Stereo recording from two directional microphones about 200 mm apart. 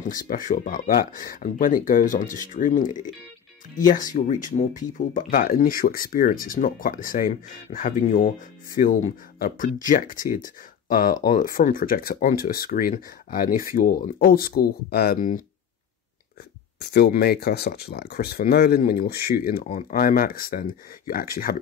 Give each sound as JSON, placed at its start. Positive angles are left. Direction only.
{"t": 0.5, "sound": "speech", "side_deg": 45}
{"t": 16.9, "sound": "speech", "side_deg": 50}